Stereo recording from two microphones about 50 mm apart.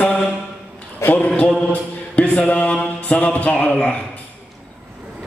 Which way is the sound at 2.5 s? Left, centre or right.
Left.